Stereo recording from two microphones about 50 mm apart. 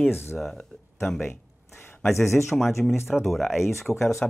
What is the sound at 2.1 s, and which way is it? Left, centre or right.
Speech, left.